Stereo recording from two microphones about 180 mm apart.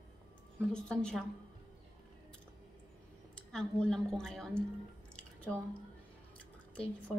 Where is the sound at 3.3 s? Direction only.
5° left (ahead or behind).